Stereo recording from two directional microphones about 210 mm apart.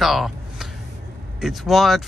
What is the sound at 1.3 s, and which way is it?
Speech, centre (ahead or behind).